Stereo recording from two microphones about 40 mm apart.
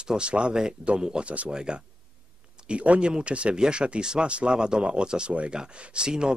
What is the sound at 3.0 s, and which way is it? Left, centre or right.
Speech, right.